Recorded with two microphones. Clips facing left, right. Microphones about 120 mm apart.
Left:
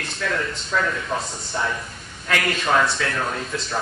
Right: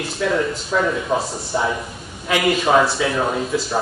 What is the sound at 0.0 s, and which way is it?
Speech, 10° right (ahead or behind).